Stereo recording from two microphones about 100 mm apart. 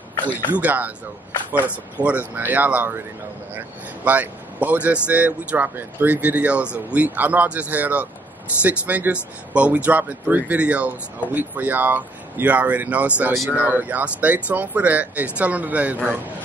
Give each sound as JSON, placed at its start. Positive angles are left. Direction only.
{"t": 0.5, "sound": "speech", "side_deg": -15}